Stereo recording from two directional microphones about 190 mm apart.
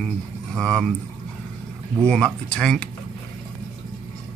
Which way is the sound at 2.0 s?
5° left (ahead or behind).